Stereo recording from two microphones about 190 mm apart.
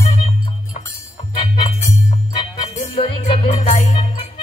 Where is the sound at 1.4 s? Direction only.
30° left (ahead or behind).